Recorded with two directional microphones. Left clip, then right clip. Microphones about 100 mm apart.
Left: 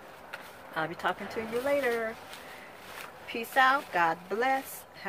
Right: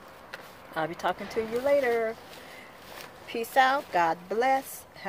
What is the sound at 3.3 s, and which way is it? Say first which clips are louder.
Speech: right 1 dB; 35° right (ahead or behind).